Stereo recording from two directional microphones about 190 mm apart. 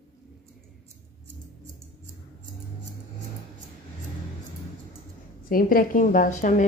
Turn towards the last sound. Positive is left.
turn(degrees=40)  # may be behind; listen again after turning